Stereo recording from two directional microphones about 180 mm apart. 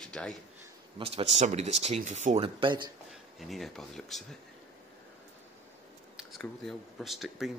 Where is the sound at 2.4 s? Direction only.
25° right (ahead or behind).